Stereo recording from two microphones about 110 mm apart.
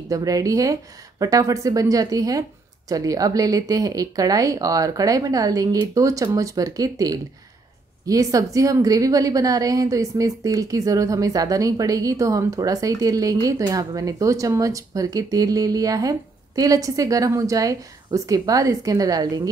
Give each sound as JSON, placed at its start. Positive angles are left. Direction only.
{"t": 0.1, "sound": "a woman's voice", "side_deg": -30}